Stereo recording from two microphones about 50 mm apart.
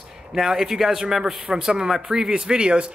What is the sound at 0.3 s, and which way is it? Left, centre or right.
Speech, centre.